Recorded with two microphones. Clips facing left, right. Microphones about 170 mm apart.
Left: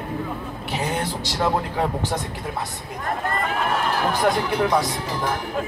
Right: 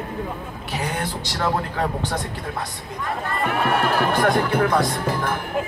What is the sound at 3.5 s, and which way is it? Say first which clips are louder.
Speech: right 5 dB; 60° right (ahead or behind).